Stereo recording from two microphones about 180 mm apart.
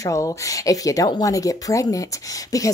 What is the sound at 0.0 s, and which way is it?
A woman's voice, 15° left (ahead or behind).